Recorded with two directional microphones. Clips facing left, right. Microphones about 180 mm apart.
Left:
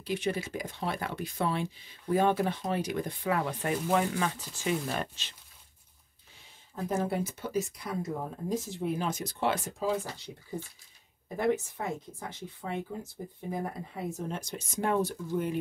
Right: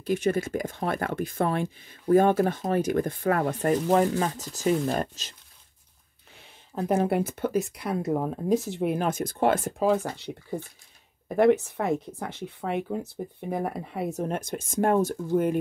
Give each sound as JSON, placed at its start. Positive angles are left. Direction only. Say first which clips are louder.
{"t": 0.0, "sound": "speech", "louder": "right 7 dB", "side_deg": -45}
{"t": 6.7, "sound": "speech", "louder": "right 7 dB", "side_deg": -65}